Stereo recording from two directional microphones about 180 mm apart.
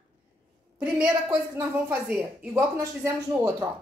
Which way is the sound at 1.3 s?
15° right (ahead or behind).